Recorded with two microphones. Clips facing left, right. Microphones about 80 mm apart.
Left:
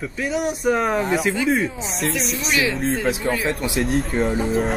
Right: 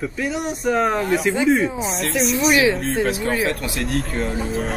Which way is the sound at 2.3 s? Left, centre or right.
Right.